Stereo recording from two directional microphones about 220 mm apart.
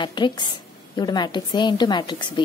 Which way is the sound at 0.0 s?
20° left (ahead or behind).